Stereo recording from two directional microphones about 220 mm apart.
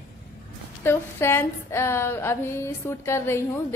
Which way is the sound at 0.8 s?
10° left (ahead or behind).